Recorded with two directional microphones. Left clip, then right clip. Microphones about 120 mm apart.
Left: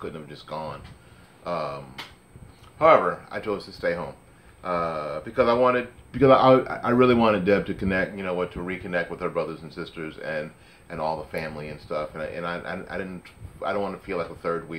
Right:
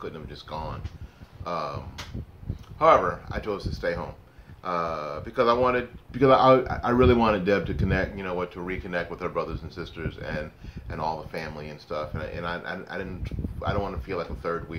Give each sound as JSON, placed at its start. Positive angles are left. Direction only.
{"t": 0.0, "sound": "speech", "side_deg": -20}
{"t": 2.8, "sound": "speech", "side_deg": -20}